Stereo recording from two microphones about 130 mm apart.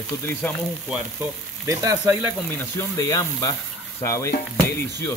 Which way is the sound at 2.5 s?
25° left (ahead or behind).